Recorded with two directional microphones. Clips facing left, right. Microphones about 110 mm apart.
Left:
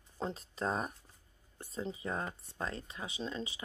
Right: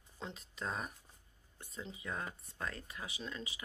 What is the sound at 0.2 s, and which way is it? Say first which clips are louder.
Speech: left 7 dB; 40° left (ahead or behind).